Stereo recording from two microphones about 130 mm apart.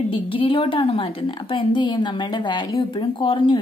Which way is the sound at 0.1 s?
40° left (ahead or behind).